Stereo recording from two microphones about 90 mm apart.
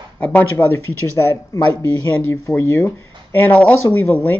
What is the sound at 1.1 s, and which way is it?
Speech, 30° left (ahead or behind).